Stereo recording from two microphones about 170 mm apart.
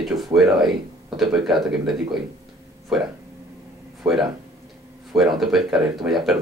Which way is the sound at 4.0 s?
5° right (ahead or behind).